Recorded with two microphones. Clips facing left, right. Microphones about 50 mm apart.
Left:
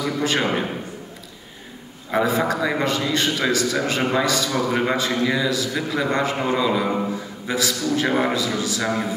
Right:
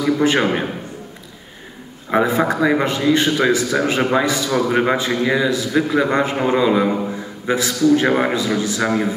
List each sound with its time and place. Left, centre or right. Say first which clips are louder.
0.2 s a man's voice: right 4 dB; right
2.0 s a man's voice: right 4 dB; right